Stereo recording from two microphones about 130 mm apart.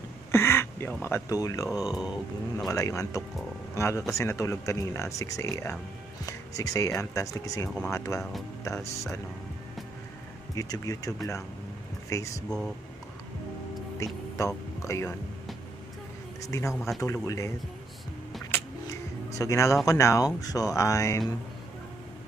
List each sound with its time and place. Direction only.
0.3 s a sound: 20° left (ahead or behind)
1.0 s speech: 20° left (ahead or behind)
1.9 s speech: 5° right (ahead or behind)
2.5 s speech: 25° left (ahead or behind)
8.2 s speech: centre (ahead or behind)
10.5 s speech: 25° left (ahead or behind)
12.4 s speech: 5° left (ahead or behind)
13.9 s speech: 25° left (ahead or behind)
16.3 s speech: 25° left (ahead or behind)
19.3 s speech: 25° left (ahead or behind)